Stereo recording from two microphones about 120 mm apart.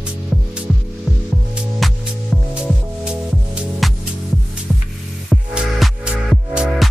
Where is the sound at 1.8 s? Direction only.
Centre (ahead or behind).